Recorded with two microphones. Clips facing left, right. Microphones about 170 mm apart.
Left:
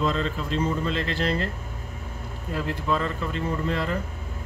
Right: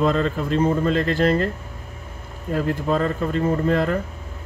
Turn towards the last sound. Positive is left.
turn(degrees=-50)  # may be behind; listen again after turning